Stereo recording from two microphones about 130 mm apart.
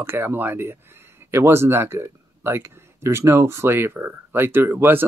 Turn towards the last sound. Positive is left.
turn(degrees=-20)  # may be behind; listen again after turning